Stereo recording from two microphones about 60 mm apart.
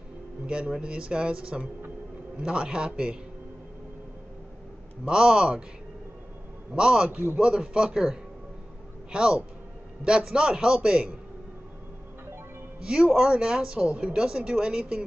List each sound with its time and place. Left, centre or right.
0.5 s speech: centre
5.0 s speech: centre
6.7 s speech: centre
7.1 s a man's voice: right
12.8 s speech: centre